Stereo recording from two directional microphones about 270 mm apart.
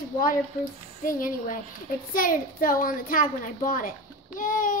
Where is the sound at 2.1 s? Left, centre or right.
Left.